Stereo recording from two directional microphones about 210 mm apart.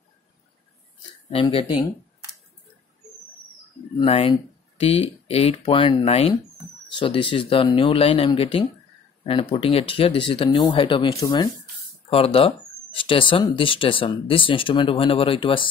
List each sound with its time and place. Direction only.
1.3 s speech: 25° left (ahead or behind)
4.0 s speech: 25° left (ahead or behind)